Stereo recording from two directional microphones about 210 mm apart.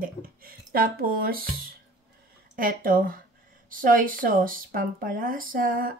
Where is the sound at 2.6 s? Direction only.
40° right (ahead or behind).